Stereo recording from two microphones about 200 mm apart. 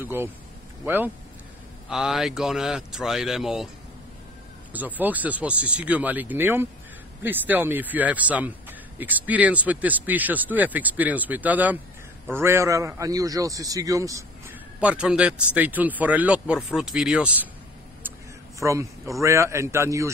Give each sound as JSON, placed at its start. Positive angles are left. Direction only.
{"t": 0.0, "sound": "a man's voice", "side_deg": -10}
{"t": 4.7, "sound": "a man's voice", "side_deg": -10}
{"t": 14.8, "sound": "a man's voice", "side_deg": -5}
{"t": 18.6, "sound": "a man's voice", "side_deg": -15}